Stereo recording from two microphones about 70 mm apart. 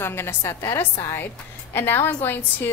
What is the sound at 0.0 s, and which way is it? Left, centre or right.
A woman's voice, left.